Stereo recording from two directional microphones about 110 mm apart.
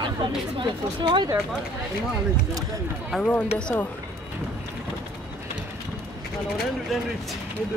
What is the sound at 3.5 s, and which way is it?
Speech, 10° left (ahead or behind).